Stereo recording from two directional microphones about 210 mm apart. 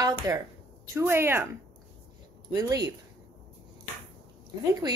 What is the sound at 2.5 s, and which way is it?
Speech, 15° right (ahead or behind).